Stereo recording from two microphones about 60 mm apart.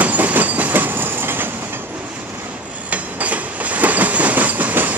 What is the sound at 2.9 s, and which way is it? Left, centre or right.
Train, right.